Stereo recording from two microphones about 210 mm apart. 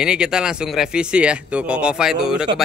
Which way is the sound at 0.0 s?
5° right (ahead or behind).